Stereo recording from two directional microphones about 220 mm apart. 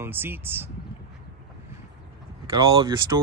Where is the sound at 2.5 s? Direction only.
15° right (ahead or behind).